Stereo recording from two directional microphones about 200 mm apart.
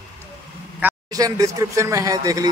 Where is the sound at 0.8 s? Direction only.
10° right (ahead or behind).